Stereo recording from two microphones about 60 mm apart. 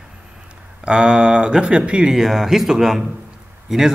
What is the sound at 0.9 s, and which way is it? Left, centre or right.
Speech, centre.